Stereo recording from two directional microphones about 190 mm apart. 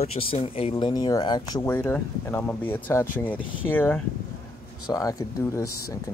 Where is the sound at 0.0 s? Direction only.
30° left (ahead or behind).